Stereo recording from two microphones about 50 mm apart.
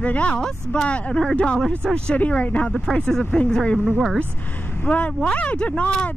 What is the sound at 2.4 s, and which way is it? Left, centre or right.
Speech, left.